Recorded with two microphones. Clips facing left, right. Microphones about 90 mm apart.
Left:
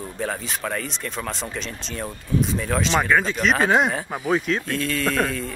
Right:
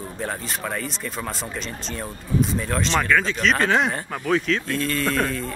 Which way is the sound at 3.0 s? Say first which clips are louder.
Left 1 dB; 15° left (ahead or behind).